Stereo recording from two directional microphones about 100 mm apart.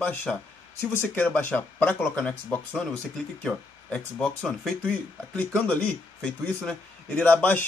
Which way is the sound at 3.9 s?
10° left (ahead or behind).